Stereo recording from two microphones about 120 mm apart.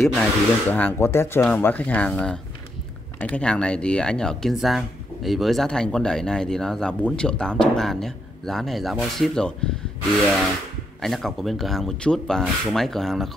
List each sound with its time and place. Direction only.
0.0 s speech: centre (ahead or behind)
0.7 s speech: 15° left (ahead or behind)
11.0 s speech: centre (ahead or behind)